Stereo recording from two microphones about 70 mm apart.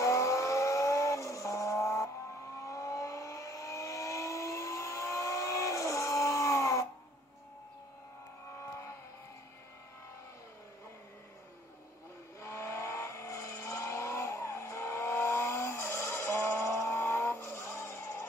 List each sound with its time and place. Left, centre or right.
0.0 s vehicle: left
12.4 s vehicle: left